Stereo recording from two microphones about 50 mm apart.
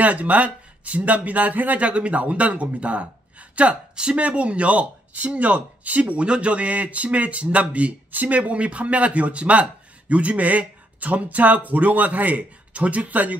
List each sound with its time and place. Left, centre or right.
0.0 s speech: right
3.9 s speech: centre